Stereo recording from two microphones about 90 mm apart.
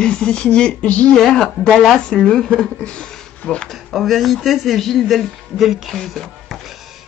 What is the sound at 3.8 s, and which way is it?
Speech, centre (ahead or behind).